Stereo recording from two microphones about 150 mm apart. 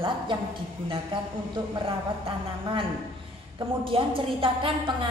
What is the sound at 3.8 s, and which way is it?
A woman's voice, 35° right (ahead or behind).